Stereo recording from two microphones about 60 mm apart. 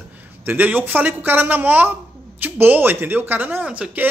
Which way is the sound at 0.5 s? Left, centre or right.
Right.